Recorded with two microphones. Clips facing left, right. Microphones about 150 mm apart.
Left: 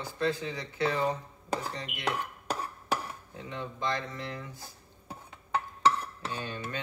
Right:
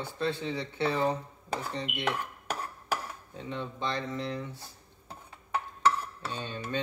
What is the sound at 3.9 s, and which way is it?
Speech, 30° right (ahead or behind).